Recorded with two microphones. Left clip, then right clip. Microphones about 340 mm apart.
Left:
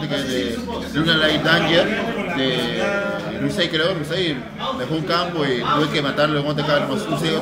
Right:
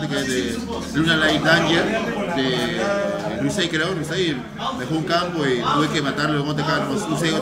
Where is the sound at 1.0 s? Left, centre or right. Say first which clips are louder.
Left 1 dB; centre.